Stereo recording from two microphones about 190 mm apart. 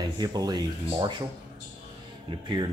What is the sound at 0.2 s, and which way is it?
Speech, 20° right (ahead or behind).